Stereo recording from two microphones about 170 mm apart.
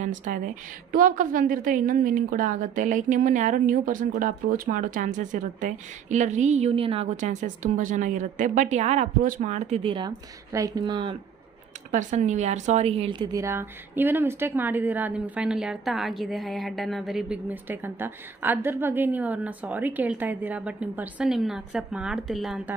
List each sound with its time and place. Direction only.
0.0 s a woman's voice: 50° right (ahead or behind)
7.2 s a woman's voice: 45° right (ahead or behind)
9.9 s speech: 20° right (ahead or behind)
11.9 s a woman's voice: 45° right (ahead or behind); by 22.8 s centre (ahead or behind)